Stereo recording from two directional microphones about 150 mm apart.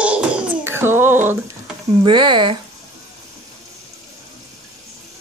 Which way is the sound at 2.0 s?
30° right (ahead or behind).